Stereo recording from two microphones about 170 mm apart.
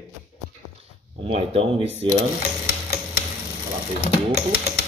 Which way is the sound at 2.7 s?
60° left (ahead or behind).